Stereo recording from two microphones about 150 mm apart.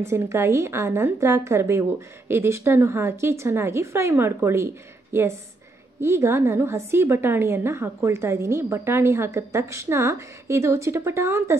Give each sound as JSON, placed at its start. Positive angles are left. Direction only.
{"t": 0.0, "sound": "a woman's voice", "side_deg": -20}